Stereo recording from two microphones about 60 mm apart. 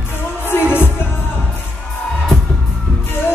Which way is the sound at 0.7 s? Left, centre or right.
Left.